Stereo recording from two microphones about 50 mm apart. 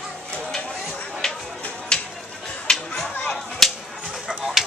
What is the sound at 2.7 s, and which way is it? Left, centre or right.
Chatter, centre.